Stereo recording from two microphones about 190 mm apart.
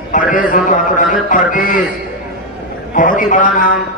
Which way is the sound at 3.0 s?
45° left (ahead or behind).